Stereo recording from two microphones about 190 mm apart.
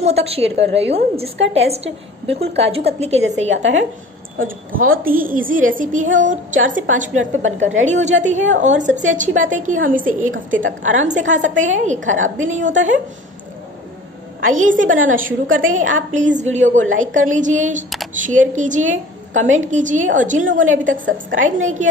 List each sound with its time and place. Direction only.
0.0 s a woman's voice: 35° right (ahead or behind)
3.5 s a woman's voice: 80° right
4.4 s a woman's voice: 45° right (ahead or behind)
10.2 s a woman's voice: 90° right
11.1 s a woman's voice: 40° right (ahead or behind)
12.0 s a woman's voice: 90° right
12.4 s a woman's voice: 40° right (ahead or behind)
14.5 s a woman's voice: 40° right (ahead or behind)
15.4 s a woman's voice: 90° right
16.2 s a woman's voice: 40° right (ahead or behind)